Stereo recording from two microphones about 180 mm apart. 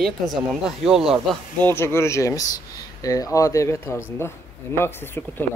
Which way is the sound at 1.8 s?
15° left (ahead or behind).